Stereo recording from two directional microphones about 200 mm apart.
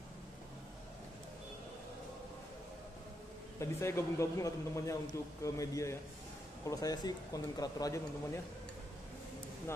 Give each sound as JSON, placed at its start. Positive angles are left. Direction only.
{"t": 3.5, "sound": "speech", "side_deg": 15}